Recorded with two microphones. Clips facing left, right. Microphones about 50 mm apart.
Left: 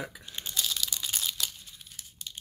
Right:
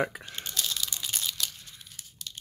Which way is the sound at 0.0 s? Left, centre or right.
Right.